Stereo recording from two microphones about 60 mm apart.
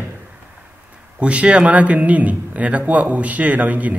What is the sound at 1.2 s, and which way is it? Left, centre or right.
A man's voice, right.